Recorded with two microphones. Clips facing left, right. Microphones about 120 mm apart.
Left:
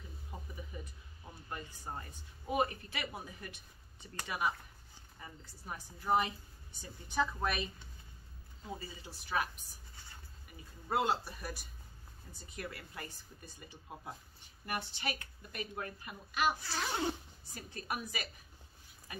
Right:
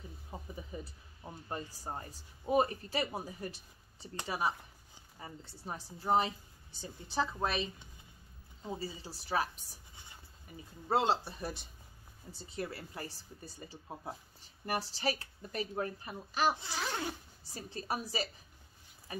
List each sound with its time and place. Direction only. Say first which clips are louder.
0.3 s a sound: right 3 dB; 25° right (ahead or behind)
0.7 s a woman's voice: right 4 dB; 30° right (ahead or behind)
8.7 s speech: right 6 dB; 30° right (ahead or behind)
10.9 s a woman's voice: right 3 dB; 25° right (ahead or behind)